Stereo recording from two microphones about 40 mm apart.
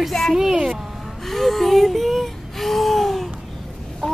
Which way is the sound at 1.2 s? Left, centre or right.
Centre.